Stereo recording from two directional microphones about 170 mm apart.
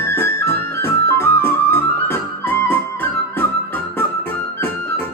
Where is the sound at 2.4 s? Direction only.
15° left (ahead or behind).